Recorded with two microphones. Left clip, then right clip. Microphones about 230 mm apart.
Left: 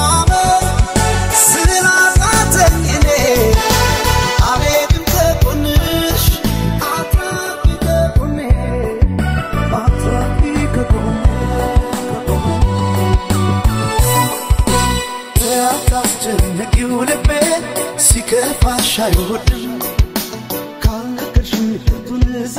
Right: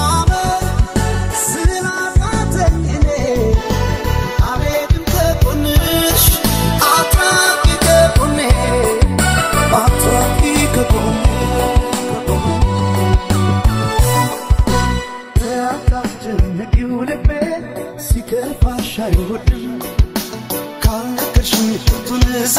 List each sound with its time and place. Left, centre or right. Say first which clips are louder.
0.0 s music: left 3 dB; centre
15.4 s music: left 4 dB; left
16.8 s music: left 4 dB; left
18.3 s music: left 3 dB; left
21.5 s music: right 3 dB; centre
22.1 s music: right 3 dB; right